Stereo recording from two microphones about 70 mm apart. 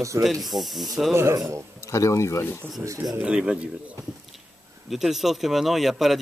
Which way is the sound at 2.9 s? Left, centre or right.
Right.